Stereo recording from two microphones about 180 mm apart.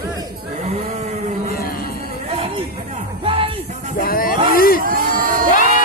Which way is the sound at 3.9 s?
55° left (ahead or behind).